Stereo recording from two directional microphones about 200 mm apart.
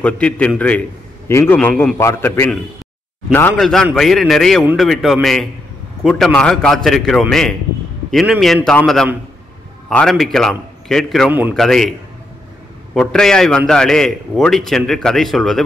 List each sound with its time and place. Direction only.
0.0 s a man's voice: 5° left (ahead or behind)
11.5 s a man's voice: centre (ahead or behind)
12.9 s a man's voice: 5° left (ahead or behind)